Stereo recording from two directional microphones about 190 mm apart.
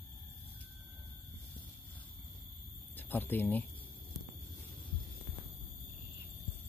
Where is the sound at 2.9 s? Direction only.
10° left (ahead or behind).